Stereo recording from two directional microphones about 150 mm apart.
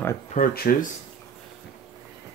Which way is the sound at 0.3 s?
75° left (ahead or behind).